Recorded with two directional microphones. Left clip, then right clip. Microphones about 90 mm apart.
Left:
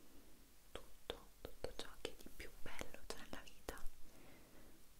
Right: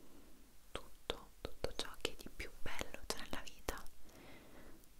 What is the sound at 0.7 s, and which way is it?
Whispering, 20° right (ahead or behind).